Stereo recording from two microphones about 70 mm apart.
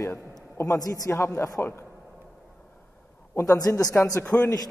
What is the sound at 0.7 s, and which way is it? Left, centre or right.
Speech, left.